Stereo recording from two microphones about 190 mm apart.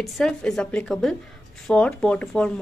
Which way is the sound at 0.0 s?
5° left (ahead or behind).